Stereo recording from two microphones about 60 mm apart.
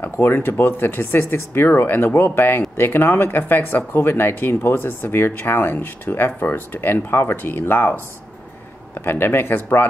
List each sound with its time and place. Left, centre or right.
0.2 s speech: left
9.0 s speech: left